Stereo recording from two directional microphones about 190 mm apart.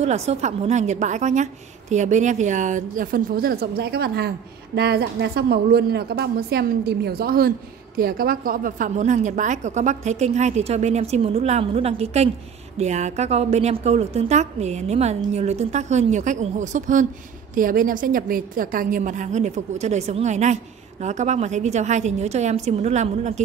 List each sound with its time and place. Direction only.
0.0 s a woman's voice: 35° right (ahead or behind)